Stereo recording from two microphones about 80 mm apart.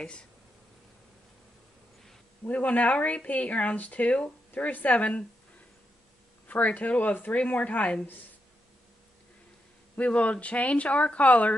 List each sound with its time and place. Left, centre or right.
2.4 s speech: centre
6.4 s speech: centre
9.9 s speech: centre